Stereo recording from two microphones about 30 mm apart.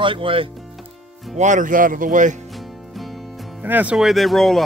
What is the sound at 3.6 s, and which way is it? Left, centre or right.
Speech, right.